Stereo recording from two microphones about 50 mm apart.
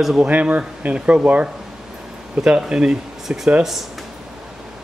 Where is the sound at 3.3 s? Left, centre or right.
Right.